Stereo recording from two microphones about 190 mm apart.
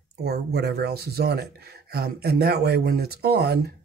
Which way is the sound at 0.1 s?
60° right (ahead or behind).